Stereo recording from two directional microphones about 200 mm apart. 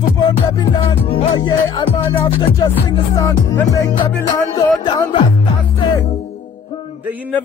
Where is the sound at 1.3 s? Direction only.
20° left (ahead or behind).